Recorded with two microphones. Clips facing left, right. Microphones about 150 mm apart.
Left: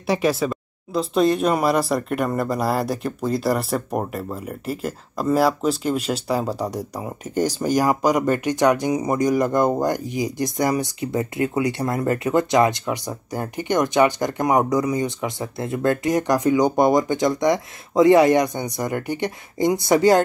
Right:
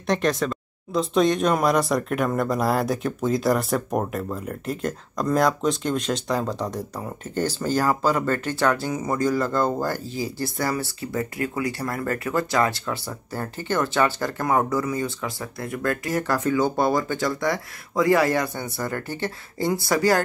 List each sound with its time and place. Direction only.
0.0 s speech: 5° left (ahead or behind); by 20.2 s 20° left (ahead or behind)